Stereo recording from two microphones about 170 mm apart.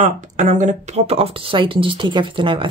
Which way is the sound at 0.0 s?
45° right (ahead or behind).